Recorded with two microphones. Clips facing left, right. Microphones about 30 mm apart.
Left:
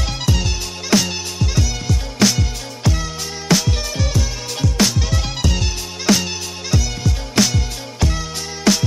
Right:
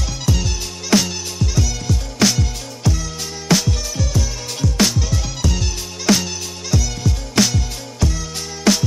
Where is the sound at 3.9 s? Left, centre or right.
Left.